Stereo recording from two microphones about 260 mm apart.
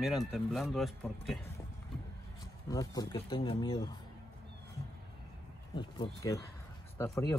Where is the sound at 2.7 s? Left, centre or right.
Centre.